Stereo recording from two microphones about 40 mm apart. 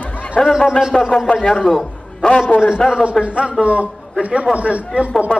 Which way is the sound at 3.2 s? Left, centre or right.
Right.